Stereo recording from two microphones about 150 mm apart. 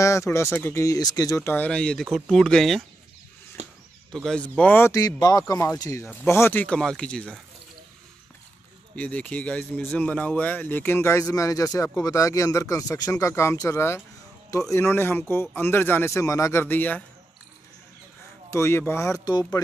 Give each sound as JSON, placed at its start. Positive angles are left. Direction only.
{"t": 0.0, "sound": "speech", "side_deg": 20}
{"t": 4.1, "sound": "speech", "side_deg": 5}
{"t": 8.9, "sound": "speech", "side_deg": 10}
{"t": 18.5, "sound": "speech", "side_deg": 20}